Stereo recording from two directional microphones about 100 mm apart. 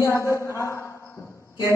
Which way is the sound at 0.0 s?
30° left (ahead or behind).